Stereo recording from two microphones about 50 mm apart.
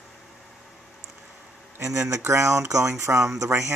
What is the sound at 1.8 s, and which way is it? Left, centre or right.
Speech, right.